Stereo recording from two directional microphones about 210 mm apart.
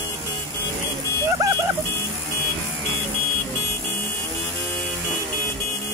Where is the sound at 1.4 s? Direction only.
15° right (ahead or behind).